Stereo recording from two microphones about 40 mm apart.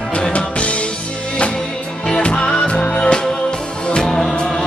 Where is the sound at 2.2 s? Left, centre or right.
Left.